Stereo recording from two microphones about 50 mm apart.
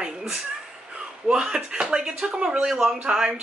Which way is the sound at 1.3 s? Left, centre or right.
Centre.